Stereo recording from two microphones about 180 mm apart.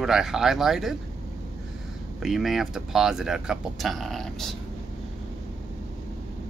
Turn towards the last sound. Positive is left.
turn(degrees=0)  # may be behind; listen again after turning